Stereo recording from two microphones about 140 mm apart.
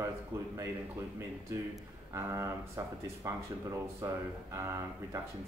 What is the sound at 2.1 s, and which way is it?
Speech, 20° right (ahead or behind).